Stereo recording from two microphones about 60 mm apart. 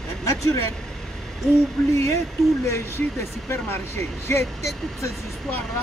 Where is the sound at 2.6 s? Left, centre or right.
Left.